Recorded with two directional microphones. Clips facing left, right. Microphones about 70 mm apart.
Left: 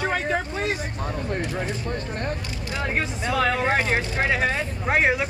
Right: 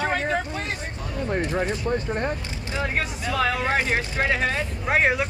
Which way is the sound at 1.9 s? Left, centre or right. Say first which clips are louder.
Right 4 dB; centre.